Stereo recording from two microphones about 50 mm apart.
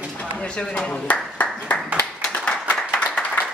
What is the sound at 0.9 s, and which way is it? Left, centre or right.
Speech, left.